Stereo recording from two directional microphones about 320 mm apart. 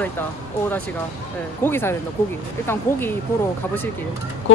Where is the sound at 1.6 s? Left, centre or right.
Centre.